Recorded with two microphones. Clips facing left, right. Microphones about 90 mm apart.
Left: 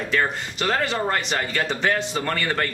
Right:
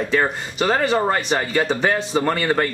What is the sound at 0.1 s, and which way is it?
Speech, 20° right (ahead or behind).